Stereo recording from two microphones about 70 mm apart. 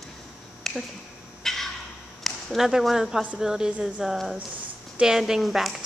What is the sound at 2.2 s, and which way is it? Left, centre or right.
Speech, centre.